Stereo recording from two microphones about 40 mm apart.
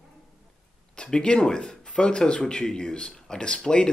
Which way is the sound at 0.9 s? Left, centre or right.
Left.